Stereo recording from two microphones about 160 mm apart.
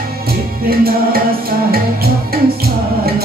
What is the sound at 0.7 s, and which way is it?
Music, 70° right (ahead or behind).